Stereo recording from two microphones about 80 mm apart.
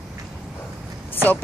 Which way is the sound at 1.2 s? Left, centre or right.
Left.